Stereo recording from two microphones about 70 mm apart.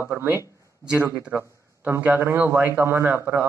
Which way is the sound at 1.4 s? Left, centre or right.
Right.